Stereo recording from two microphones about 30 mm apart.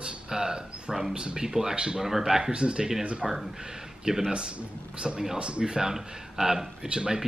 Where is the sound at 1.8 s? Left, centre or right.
Right.